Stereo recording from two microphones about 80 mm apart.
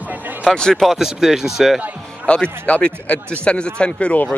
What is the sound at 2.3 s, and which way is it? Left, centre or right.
Speech, centre.